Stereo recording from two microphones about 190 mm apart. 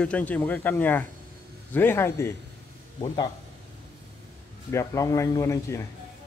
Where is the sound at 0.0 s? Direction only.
5° left (ahead or behind).